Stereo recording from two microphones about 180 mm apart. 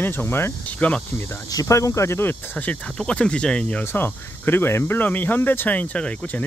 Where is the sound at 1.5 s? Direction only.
20° left (ahead or behind).